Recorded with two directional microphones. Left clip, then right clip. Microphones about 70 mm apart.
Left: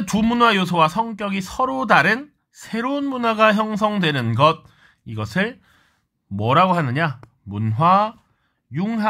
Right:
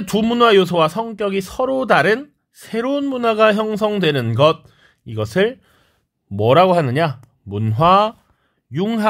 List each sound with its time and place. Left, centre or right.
0.0 s a man's voice: right
8.7 s a man's voice: right